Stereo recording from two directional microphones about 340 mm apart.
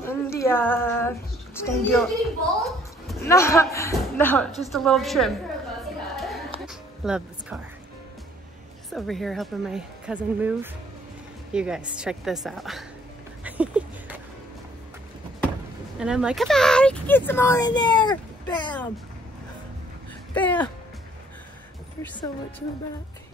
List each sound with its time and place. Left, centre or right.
0.0 s a woman's voice: centre
5.9 s music: centre
8.9 s speech: centre
13.4 s a sound: centre
16.0 s speech: centre
20.3 s speech: centre